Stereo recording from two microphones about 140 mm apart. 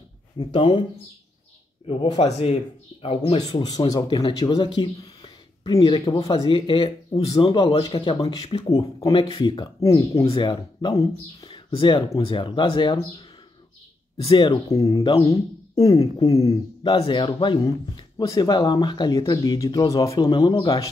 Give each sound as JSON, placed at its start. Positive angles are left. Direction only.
{"t": 0.4, "sound": "speech", "side_deg": 35}
{"t": 1.9, "sound": "speech", "side_deg": 40}
{"t": 3.7, "sound": "speech", "side_deg": 25}
{"t": 4.2, "sound": "speech", "side_deg": 40}
{"t": 8.6, "sound": "speech", "side_deg": 25}
{"t": 9.1, "sound": "speech", "side_deg": 40}
{"t": 9.8, "sound": "speech", "side_deg": 20}
{"t": 10.2, "sound": "speech", "side_deg": 40}
{"t": 14.3, "sound": "speech", "side_deg": 35}
{"t": 14.7, "sound": "speech", "side_deg": 25}
{"t": 16.8, "sound": "speech", "side_deg": 35}